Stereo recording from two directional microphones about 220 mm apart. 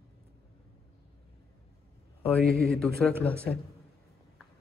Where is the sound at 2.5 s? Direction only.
45° right (ahead or behind).